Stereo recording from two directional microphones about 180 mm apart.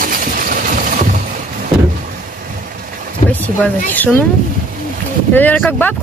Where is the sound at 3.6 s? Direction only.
10° left (ahead or behind).